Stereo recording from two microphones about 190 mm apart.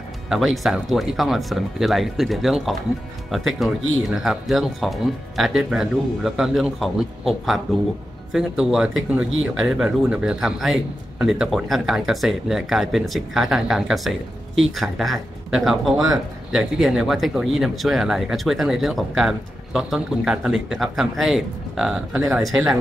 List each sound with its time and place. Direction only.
0.3 s a man's voice: centre (ahead or behind)